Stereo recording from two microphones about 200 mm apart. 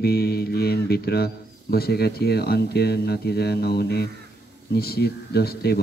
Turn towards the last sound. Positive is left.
turn(degrees=50)  # may be behind; listen again after turning